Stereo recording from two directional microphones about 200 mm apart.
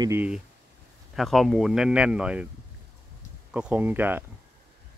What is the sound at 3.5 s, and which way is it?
Speech, 5° right (ahead or behind).